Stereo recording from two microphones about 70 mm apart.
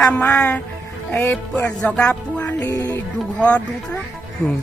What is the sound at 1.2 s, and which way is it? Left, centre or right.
Music, left.